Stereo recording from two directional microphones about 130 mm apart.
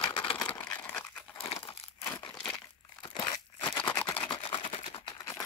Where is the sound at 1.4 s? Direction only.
45° left (ahead or behind).